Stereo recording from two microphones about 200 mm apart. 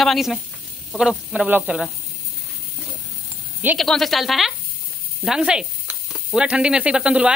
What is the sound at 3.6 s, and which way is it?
Speech, 10° right (ahead or behind).